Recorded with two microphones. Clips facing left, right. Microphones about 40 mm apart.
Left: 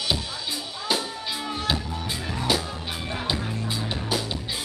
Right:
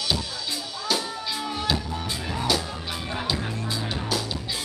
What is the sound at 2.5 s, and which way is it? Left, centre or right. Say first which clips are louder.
Music: left 1 dB; centre.